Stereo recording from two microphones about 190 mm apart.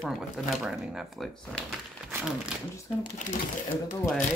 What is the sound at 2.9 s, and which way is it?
Speech, 30° left (ahead or behind).